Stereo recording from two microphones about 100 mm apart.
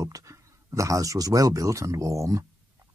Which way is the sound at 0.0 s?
30° right (ahead or behind).